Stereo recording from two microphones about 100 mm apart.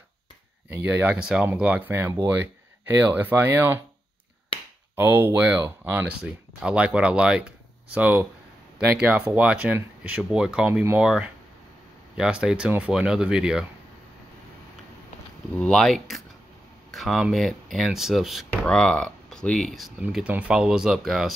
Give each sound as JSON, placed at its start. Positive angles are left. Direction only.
{"t": 0.8, "sound": "speech", "side_deg": -10}
{"t": 4.9, "sound": "speech", "side_deg": -20}
{"t": 10.7, "sound": "speech", "side_deg": -20}
{"t": 11.0, "sound": "speech", "side_deg": -10}
{"t": 15.6, "sound": "speech", "side_deg": 5}
{"t": 18.5, "sound": "speech", "side_deg": 10}
{"t": 20.0, "sound": "speech", "side_deg": -10}